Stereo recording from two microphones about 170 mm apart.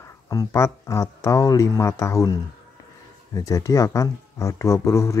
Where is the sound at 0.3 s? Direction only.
20° left (ahead or behind).